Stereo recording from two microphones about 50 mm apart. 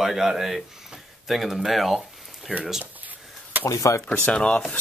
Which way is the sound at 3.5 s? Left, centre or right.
Right.